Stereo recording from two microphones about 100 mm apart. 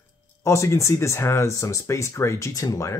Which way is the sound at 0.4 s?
30° left (ahead or behind).